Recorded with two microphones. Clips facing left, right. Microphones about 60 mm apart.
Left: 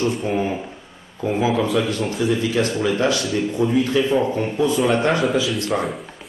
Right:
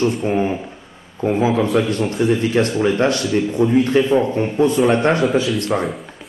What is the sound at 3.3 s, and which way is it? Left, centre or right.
A man's voice, right.